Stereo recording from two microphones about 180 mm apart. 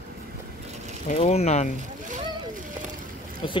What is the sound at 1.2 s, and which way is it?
Speech, 35° left (ahead or behind).